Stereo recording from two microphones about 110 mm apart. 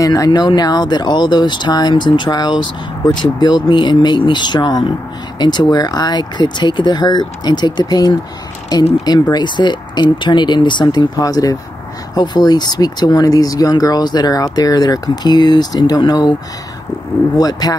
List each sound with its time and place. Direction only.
0.0 s speech: 35° left (ahead or behind)
9.3 s speech: 45° left (ahead or behind)
17.4 s speech: 40° left (ahead or behind)